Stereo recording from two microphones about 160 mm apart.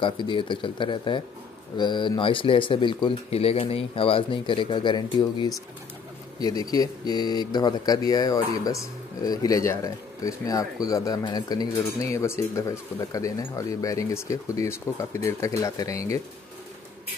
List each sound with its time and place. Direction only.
0.0 s speech: 30° left (ahead or behind)